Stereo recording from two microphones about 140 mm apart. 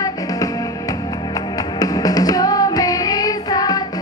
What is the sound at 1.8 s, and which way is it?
Music, 25° left (ahead or behind).